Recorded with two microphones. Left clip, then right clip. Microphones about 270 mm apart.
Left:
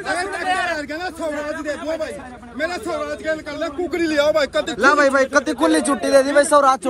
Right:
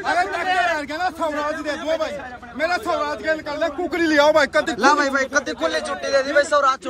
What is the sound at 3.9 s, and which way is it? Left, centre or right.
Speech, right.